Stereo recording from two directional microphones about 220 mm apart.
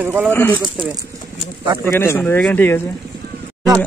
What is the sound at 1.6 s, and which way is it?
Speech, 20° right (ahead or behind).